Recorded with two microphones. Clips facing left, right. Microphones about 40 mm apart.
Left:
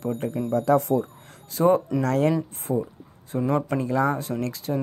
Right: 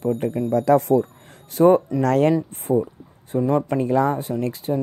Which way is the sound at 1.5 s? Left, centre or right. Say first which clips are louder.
Right 5 dB; right.